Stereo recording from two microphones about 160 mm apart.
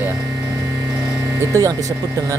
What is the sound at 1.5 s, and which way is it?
Speech, 20° right (ahead or behind).